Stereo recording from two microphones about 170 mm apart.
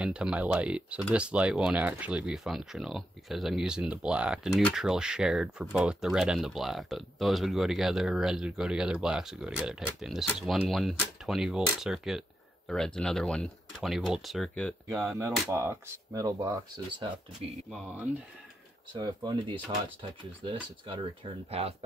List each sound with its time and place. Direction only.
0.0 s speech: 5° right (ahead or behind)
15.1 s speech: 15° right (ahead or behind)
18.9 s speech: 25° right (ahead or behind)